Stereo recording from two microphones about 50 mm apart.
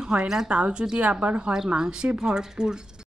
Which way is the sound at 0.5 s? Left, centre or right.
Right.